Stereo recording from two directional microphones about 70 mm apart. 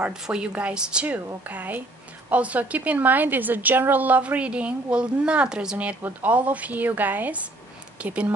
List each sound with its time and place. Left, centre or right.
0.0 s a woman's voice: centre